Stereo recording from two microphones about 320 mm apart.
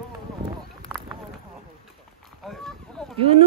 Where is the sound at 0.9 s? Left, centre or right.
Centre.